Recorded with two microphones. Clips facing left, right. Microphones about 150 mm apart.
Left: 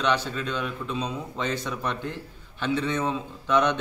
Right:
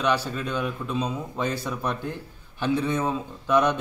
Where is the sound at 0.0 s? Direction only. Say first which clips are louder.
Right 1 dB; 10° right (ahead or behind).